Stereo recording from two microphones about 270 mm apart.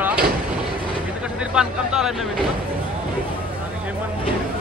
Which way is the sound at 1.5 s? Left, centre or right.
Centre.